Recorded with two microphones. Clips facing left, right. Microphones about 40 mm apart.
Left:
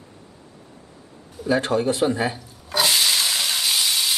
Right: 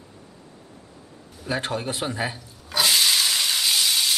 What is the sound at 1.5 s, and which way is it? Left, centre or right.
Speech, centre.